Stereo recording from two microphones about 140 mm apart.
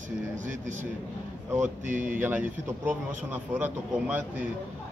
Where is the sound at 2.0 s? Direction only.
10° right (ahead or behind).